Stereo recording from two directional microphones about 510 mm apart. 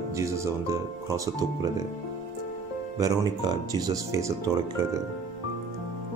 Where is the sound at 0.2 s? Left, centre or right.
Centre.